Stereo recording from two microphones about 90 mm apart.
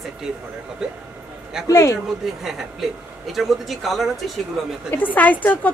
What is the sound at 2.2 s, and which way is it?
A woman's voice, 5° right (ahead or behind).